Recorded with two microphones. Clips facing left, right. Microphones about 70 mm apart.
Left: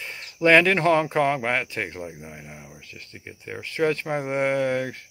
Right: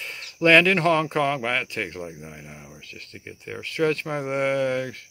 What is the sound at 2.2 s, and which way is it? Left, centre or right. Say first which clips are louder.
Speech: even; centre.